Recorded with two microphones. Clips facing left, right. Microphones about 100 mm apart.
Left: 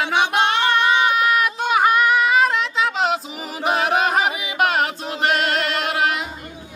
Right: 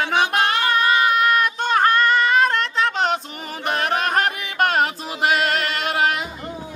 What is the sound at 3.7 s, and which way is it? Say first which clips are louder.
Chant: left 3 dB; 5° left (ahead or behind).